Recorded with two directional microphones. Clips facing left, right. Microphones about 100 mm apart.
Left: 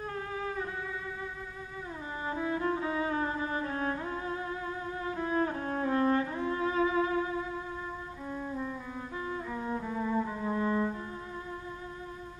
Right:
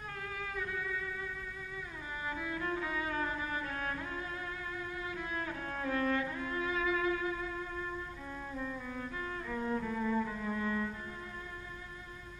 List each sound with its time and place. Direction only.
0.1 s music: 30° left (ahead or behind)
2.2 s music: 30° left (ahead or behind)
9.2 s music: 20° left (ahead or behind)